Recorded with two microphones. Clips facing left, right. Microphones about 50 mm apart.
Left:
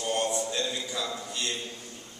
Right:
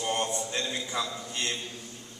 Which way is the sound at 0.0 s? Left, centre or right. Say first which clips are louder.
Left 1 dB; right.